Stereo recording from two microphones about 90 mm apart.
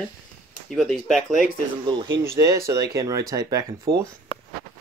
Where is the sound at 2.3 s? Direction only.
40° right (ahead or behind).